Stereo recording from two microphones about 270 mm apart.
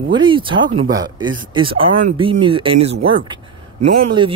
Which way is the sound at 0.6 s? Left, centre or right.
Right.